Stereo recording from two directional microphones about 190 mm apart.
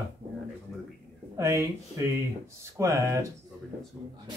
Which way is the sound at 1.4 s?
15° right (ahead or behind).